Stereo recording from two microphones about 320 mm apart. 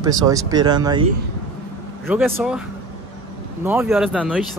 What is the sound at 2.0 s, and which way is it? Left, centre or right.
Speech, centre.